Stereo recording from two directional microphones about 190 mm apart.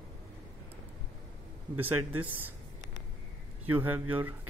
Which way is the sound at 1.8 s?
10° right (ahead or behind).